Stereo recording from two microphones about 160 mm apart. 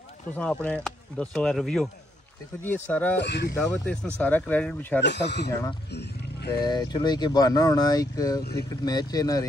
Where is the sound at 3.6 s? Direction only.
5° left (ahead or behind).